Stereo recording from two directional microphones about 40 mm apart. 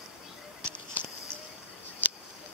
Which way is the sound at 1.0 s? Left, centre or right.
Right.